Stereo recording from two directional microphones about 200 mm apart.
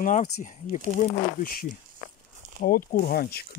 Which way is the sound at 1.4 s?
45° left (ahead or behind).